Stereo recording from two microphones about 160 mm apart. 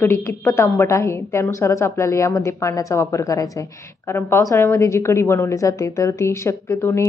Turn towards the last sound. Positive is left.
turn(degrees=15)  # may be behind; listen again after turning